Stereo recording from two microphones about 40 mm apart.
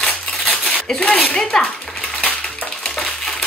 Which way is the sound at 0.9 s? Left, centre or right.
Left.